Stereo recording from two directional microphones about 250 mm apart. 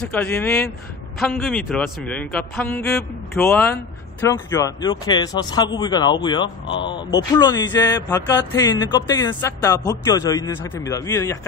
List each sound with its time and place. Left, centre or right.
0.0 s speech: centre